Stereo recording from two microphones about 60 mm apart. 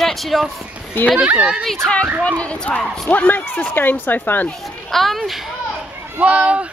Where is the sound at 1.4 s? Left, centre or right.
Centre.